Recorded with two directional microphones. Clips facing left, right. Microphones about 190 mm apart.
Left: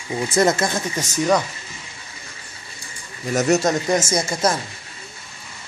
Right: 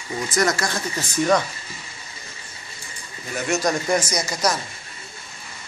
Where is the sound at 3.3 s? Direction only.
40° left (ahead or behind).